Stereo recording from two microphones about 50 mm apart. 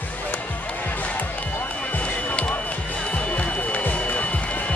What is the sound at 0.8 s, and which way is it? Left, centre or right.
Music, left.